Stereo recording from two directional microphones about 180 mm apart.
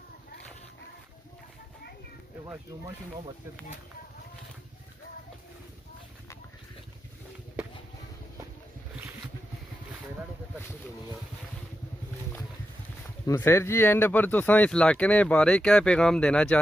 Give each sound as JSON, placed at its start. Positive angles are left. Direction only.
{"t": 13.3, "sound": "speech", "side_deg": 15}